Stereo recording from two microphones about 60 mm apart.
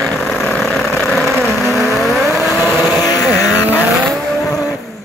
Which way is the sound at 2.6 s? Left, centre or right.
Right.